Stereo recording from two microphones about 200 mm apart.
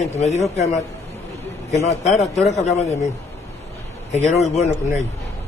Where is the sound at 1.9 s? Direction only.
35° left (ahead or behind).